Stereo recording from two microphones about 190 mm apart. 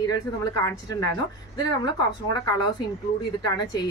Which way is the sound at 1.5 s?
20° left (ahead or behind).